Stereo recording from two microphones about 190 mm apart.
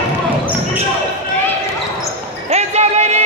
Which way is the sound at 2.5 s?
35° right (ahead or behind).